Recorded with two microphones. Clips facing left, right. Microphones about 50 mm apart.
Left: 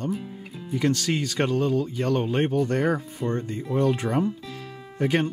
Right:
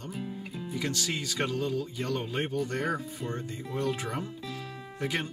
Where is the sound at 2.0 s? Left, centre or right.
Left.